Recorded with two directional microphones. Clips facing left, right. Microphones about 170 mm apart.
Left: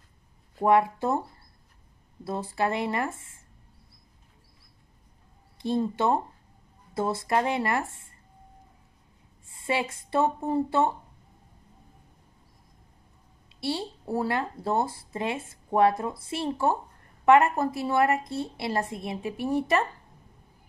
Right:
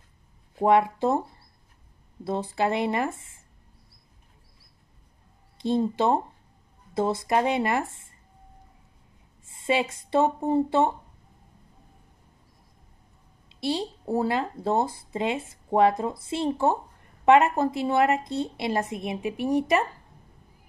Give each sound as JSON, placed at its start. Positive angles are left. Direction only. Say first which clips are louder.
{"t": 0.6, "sound": "speech", "louder": "right 1 dB", "side_deg": -20}
{"t": 2.2, "sound": "speech", "louder": "right 2 dB", "side_deg": -25}
{"t": 5.6, "sound": "speech", "louder": "right 2 dB", "side_deg": -20}
{"t": 9.5, "sound": "speech", "louder": "right 3 dB", "side_deg": -20}
{"t": 13.5, "sound": "speech", "louder": "right 3 dB", "side_deg": -20}